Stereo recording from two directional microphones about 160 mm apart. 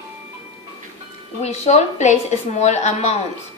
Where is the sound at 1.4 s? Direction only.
45° left (ahead or behind).